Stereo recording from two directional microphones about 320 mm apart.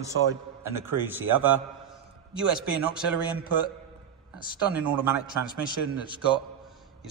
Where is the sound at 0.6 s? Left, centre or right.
Centre.